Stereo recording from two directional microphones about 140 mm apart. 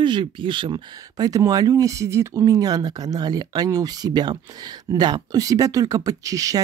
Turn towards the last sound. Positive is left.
turn(degrees=-25)  # may be behind; listen again after turning